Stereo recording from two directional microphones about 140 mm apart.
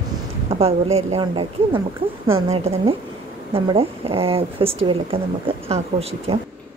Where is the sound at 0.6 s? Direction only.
45° right (ahead or behind).